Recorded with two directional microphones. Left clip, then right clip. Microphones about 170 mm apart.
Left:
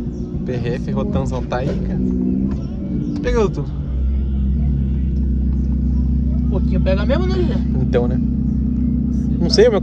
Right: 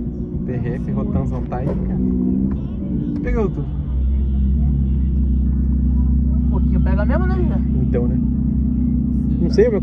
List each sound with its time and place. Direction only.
0.9 s speech: 55° right (ahead or behind)
3.1 s speech: 55° right (ahead or behind)
7.1 s speech: 55° right (ahead or behind)
9.4 s speech: 55° right (ahead or behind)